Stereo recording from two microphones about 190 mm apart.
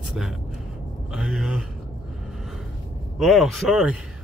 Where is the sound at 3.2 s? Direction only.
Centre (ahead or behind).